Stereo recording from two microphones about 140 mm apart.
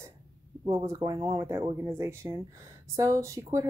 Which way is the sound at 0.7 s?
20° right (ahead or behind).